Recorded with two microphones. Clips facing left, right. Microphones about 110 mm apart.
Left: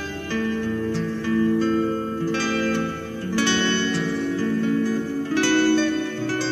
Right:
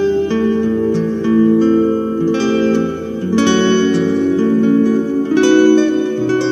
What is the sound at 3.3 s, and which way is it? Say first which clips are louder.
Music: right 10 dB; 20° right (ahead or behind).